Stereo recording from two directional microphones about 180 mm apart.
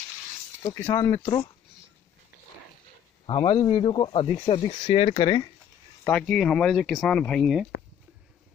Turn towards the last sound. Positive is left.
turn(degrees=0)  # may be behind; listen again after turning